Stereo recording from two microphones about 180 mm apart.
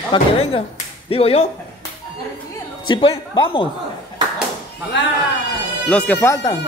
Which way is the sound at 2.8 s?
25° left (ahead or behind).